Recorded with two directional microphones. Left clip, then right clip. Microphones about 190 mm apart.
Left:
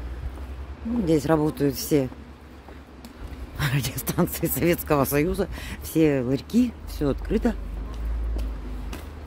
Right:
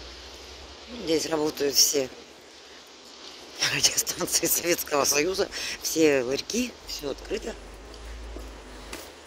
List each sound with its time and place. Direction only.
1.0 s speech: 20° left (ahead or behind)
3.5 s speech: 10° left (ahead or behind)
7.0 s speech: 25° left (ahead or behind)